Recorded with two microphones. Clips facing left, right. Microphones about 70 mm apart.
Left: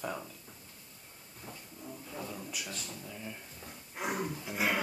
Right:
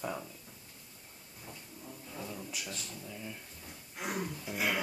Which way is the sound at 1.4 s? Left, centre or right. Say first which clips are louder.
Left 2 dB; centre.